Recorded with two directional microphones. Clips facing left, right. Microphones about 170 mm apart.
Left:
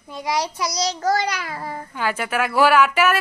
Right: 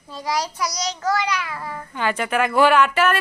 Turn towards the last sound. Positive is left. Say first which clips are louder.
# even
turn(degrees=5)  # may be behind; listen again after turning